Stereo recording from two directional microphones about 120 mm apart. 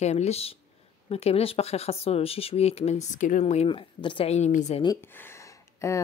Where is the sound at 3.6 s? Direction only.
45° left (ahead or behind).